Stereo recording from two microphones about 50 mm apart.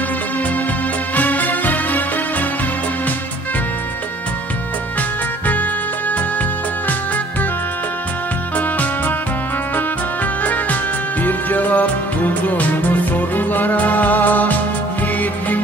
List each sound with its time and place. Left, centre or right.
1.1 s music: left
5.5 s music: left
8.5 s music: left
10.4 s music: left